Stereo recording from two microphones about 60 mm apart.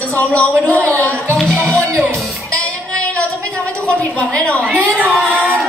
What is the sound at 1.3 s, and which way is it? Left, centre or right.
Music, centre.